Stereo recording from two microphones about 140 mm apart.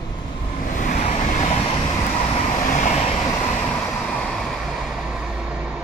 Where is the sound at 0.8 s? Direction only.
65° left (ahead or behind).